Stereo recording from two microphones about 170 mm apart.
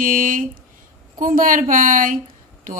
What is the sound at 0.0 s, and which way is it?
A woman's voice, 55° right (ahead or behind).